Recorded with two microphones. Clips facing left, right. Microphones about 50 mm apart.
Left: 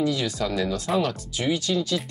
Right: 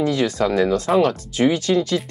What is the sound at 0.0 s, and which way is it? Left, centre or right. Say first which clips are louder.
Speech: right 6 dB; right.